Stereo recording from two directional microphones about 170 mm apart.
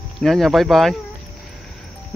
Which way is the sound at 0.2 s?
Centre (ahead or behind).